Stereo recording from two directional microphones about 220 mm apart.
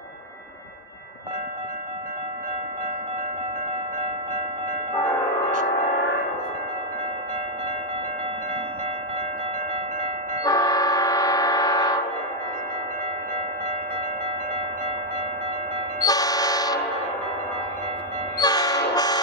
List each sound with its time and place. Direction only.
10.4 s vehicle: 15° left (ahead or behind)
16.0 s train: 15° left (ahead or behind)
18.4 s train: 15° left (ahead or behind)